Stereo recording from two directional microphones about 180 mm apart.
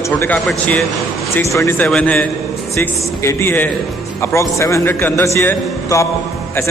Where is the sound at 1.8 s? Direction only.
5° left (ahead or behind).